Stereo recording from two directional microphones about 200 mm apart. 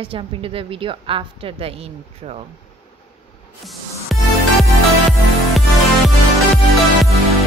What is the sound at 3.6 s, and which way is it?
Music, centre (ahead or behind).